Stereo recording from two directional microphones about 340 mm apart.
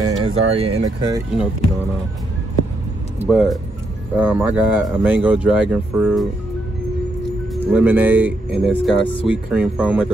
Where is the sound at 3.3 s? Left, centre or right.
Centre.